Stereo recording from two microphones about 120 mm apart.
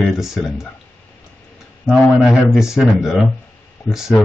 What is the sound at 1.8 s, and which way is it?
Speech, 5° right (ahead or behind).